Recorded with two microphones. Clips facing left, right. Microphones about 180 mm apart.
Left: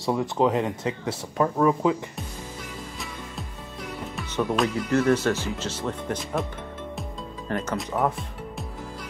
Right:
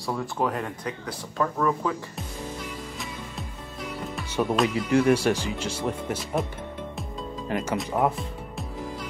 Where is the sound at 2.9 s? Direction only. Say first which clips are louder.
Even; centre (ahead or behind).